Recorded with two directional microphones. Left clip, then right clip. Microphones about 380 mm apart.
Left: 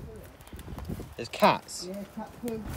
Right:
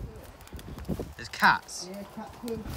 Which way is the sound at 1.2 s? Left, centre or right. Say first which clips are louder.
Right 1 dB; centre.